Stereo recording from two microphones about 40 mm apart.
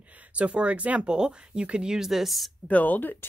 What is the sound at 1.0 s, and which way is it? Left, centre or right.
Speech, right.